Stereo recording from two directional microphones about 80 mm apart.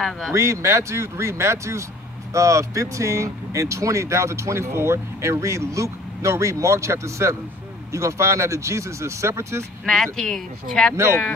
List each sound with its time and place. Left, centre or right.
0.3 s speech: right
9.8 s speech: centre